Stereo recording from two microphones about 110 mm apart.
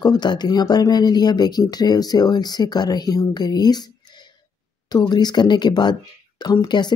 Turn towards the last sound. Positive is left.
turn(degrees=40)  # may be behind; listen again after turning